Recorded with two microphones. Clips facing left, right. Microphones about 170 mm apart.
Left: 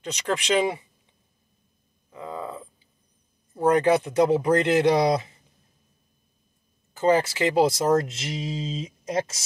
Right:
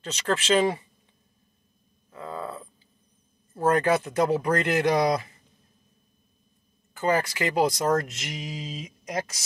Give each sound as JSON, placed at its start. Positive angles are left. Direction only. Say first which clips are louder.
{"t": 0.0, "sound": "speech", "louder": "even", "side_deg": 15}
{"t": 2.0, "sound": "a sound", "louder": "left 1 dB", "side_deg": 15}
{"t": 3.5, "sound": "speech", "louder": "left 3 dB", "side_deg": 15}
{"t": 6.9, "sound": "speech", "louder": "left 4 dB", "side_deg": 25}